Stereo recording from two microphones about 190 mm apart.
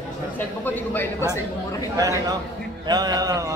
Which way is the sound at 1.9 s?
15° right (ahead or behind).